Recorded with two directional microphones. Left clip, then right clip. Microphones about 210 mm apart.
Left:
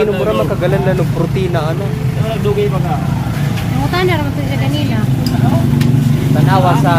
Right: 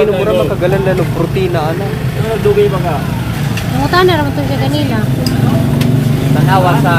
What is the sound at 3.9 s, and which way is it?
Speech, 20° right (ahead or behind).